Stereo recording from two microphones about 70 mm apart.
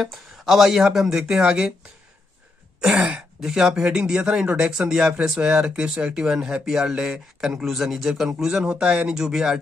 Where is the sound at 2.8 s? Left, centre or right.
Centre.